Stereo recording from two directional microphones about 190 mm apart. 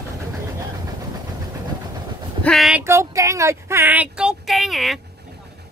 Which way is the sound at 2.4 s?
Centre (ahead or behind).